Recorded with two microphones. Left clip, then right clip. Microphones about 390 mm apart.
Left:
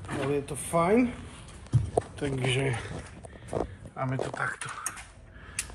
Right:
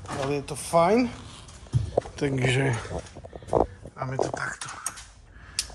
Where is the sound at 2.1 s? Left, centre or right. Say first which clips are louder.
Right 4 dB; right.